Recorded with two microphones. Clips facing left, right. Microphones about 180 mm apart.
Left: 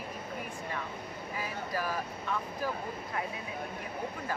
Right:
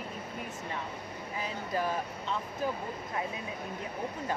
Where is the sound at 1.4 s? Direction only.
25° right (ahead or behind).